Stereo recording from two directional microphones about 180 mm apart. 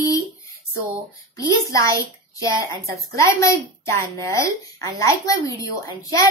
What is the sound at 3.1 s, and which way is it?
A woman's voice, 15° left (ahead or behind).